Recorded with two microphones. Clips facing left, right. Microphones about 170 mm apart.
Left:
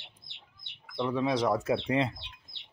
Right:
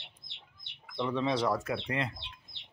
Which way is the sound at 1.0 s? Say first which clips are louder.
Left 2 dB; 10° left (ahead or behind).